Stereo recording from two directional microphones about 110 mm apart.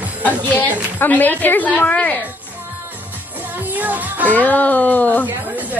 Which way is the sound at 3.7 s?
15° right (ahead or behind).